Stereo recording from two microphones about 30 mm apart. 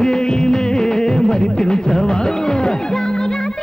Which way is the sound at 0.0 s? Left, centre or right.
Left.